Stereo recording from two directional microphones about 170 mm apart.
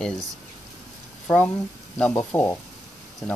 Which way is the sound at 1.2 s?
10° left (ahead or behind).